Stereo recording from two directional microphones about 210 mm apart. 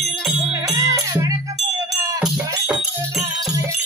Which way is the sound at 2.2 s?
5° right (ahead or behind).